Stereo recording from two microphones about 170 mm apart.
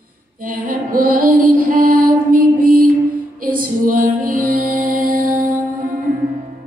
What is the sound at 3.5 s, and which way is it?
Music, 50° right (ahead or behind).